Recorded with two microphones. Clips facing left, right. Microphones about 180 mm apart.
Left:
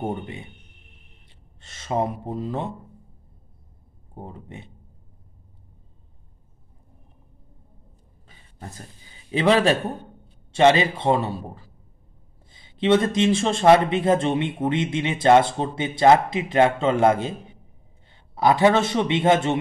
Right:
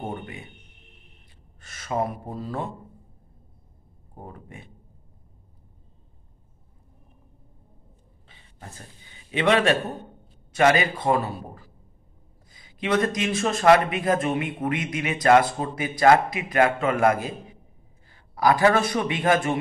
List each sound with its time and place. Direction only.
0.1 s speech: 25° left (ahead or behind)
1.6 s speech: 25° left (ahead or behind)
4.1 s speech: 25° left (ahead or behind)
8.3 s a man's voice: 40° left (ahead or behind)